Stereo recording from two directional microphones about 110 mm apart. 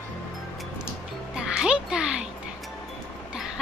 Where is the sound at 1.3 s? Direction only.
5° right (ahead or behind).